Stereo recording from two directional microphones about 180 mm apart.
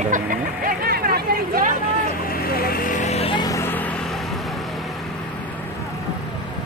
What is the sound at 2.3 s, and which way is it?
Vehicle, 55° left (ahead or behind).